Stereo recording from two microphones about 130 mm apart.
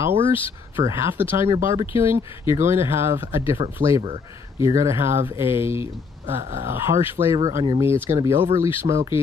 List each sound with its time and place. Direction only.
0.0 s speech: 15° right (ahead or behind)